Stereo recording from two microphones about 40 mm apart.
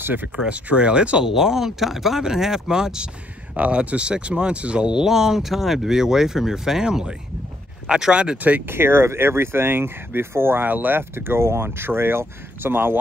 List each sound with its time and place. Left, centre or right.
0.0 s speech: right
0.5 s speech: right
1.2 s speech: centre
3.5 s speech: right
4.8 s speech: centre
8.4 s speech: right
8.6 s speech: right
10.7 s speech: right
11.0 s speech: right